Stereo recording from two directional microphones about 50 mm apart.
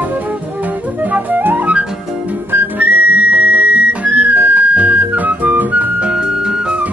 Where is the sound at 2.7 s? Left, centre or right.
Right.